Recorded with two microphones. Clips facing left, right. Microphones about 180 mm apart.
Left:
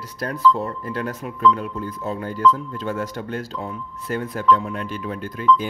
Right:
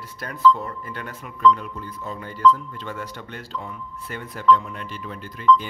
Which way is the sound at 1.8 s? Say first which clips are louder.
Left 6 dB; 45° left (ahead or behind).